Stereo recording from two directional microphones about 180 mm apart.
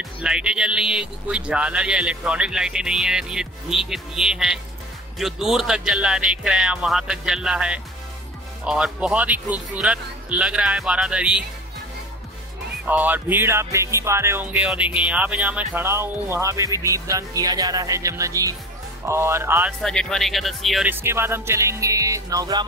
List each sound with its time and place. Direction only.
0.2 s speech: 5° right (ahead or behind)
12.8 s speech: 10° right (ahead or behind)
19.8 s speech: 5° left (ahead or behind)
20.9 s speech: 15° right (ahead or behind)